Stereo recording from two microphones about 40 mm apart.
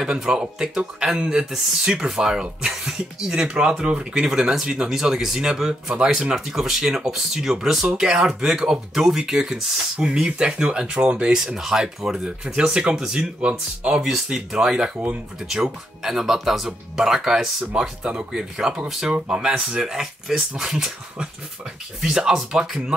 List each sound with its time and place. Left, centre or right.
0.6 s speech: centre
9.9 s speech: right
11.3 s speech: centre
13.2 s speech: right
14.0 s speech: centre
18.0 s speech: right
18.9 s speech: centre
19.1 s speech: right
22.0 s speech: centre